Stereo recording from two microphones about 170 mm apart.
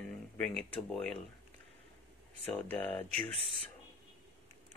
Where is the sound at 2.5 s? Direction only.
10° left (ahead or behind).